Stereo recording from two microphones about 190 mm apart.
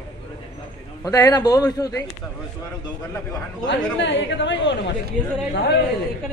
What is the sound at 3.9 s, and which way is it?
Speech, 70° left (ahead or behind).